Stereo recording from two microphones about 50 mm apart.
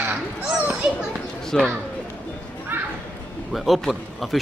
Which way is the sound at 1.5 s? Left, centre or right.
Centre.